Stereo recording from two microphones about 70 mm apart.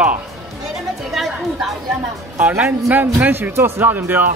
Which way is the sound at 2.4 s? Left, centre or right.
Right.